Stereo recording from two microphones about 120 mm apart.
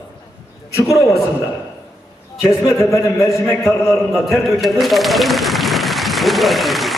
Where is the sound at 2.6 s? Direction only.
25° left (ahead or behind).